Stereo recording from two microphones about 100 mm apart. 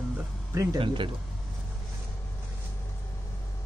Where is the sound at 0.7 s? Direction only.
55° right (ahead or behind).